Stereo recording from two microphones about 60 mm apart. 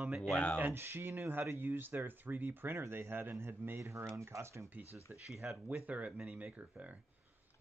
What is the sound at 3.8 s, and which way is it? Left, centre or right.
Speech, right.